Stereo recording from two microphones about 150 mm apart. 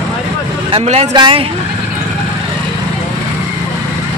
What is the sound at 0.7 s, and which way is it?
Speech, 45° right (ahead or behind).